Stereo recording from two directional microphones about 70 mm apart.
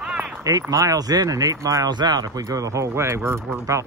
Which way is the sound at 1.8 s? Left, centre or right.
Right.